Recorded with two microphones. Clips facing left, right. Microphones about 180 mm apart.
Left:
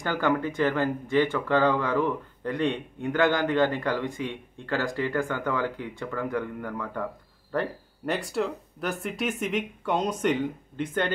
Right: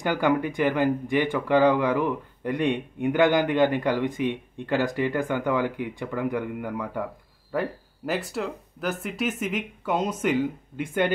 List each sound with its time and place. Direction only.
0.0 s speech: 15° right (ahead or behind)